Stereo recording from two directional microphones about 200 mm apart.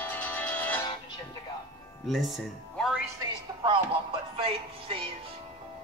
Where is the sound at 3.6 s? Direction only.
25° right (ahead or behind).